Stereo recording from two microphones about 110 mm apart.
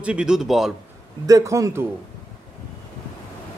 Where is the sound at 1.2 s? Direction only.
30° right (ahead or behind).